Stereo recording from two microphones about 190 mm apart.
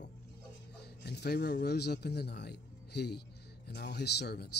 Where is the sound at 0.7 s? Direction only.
60° left (ahead or behind).